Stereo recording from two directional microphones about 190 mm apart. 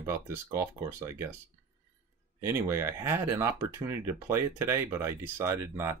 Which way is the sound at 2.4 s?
15° right (ahead or behind).